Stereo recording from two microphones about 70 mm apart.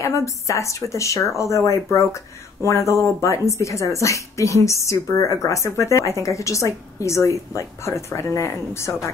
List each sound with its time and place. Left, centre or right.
0.0 s speech: left